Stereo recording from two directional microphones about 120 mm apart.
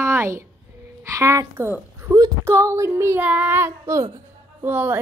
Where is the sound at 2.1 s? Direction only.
25° right (ahead or behind).